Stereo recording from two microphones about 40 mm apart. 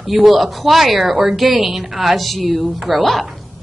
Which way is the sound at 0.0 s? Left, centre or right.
Centre.